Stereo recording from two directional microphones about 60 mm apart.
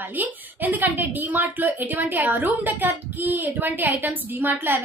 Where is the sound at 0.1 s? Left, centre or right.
Right.